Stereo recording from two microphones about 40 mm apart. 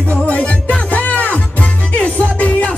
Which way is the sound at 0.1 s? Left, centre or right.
Left.